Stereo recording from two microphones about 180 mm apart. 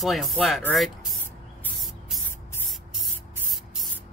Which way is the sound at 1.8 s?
Centre (ahead or behind).